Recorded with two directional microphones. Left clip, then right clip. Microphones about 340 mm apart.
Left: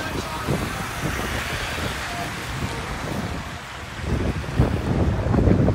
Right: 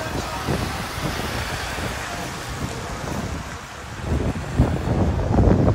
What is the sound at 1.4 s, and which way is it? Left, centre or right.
Vehicle, right.